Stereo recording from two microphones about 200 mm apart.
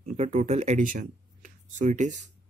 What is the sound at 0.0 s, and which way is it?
Speech, 35° right (ahead or behind).